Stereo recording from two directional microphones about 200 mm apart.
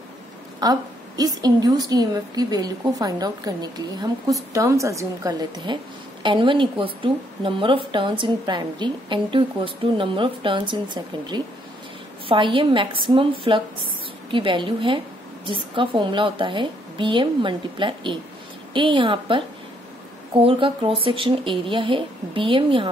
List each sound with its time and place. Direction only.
0.6 s a woman's voice: 20° right (ahead or behind)